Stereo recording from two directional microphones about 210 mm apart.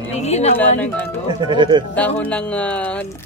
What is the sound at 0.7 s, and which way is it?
Speech, 10° left (ahead or behind).